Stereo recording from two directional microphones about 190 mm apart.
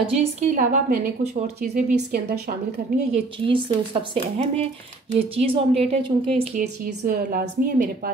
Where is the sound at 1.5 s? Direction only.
60° right (ahead or behind).